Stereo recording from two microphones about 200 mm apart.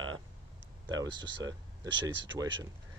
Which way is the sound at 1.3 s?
65° right (ahead or behind).